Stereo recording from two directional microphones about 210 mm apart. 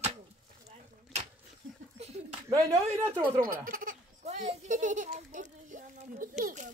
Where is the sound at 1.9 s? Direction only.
30° right (ahead or behind).